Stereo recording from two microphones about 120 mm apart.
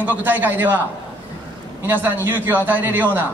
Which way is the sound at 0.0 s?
15° right (ahead or behind).